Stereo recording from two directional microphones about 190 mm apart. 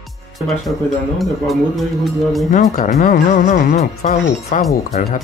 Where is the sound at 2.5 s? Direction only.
45° left (ahead or behind).